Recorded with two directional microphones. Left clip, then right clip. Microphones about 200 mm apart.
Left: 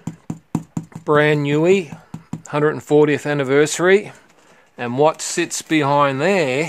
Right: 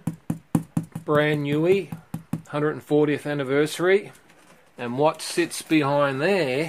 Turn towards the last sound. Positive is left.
turn(degrees=40)  # may be behind; listen again after turning